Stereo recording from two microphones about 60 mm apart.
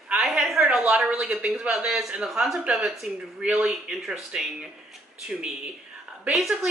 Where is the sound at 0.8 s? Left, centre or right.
Right.